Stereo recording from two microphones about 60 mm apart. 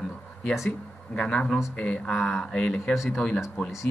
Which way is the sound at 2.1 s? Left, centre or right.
Centre.